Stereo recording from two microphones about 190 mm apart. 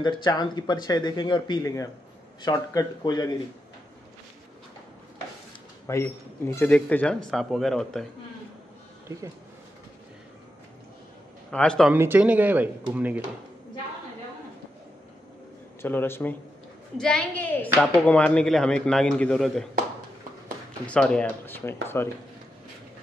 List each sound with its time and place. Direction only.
0.0 s speech: 20° left (ahead or behind)
5.9 s speech: 15° left (ahead or behind)
11.5 s speech: 5° left (ahead or behind)
11.9 s speech: 10° right (ahead or behind)
15.8 s speech: 10° left (ahead or behind)
20.8 s speech: 5° left (ahead or behind)